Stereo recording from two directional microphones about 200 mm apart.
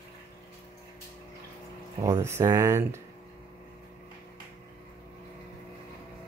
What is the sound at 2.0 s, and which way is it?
Speech, 15° right (ahead or behind).